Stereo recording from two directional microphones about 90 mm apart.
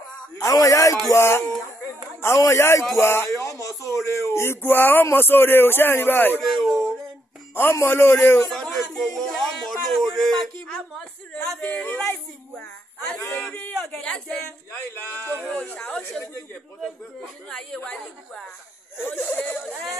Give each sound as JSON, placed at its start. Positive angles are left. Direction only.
{"t": 0.4, "sound": "a man's voice", "side_deg": 40}
{"t": 6.4, "sound": "speech", "side_deg": 0}
{"t": 7.5, "sound": "speech", "side_deg": 25}
{"t": 8.5, "sound": "a sound", "side_deg": 5}
{"t": 11.6, "sound": "a sound", "side_deg": 20}
{"t": 13.3, "sound": "speech", "side_deg": 5}
{"t": 18.9, "sound": "speech", "side_deg": 20}
{"t": 19.6, "sound": "speech", "side_deg": 0}